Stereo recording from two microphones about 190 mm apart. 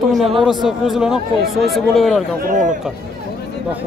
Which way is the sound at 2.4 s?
45° right (ahead or behind).